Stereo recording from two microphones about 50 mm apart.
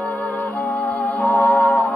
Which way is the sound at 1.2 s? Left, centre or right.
Left.